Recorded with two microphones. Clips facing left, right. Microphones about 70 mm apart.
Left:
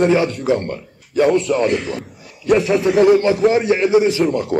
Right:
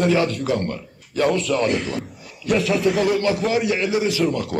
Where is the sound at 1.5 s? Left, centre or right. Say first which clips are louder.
Left 3 dB; centre.